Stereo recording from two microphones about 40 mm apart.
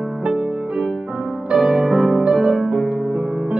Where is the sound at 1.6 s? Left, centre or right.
Centre.